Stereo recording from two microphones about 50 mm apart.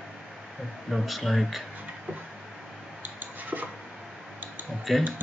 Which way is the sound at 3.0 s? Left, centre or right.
Right.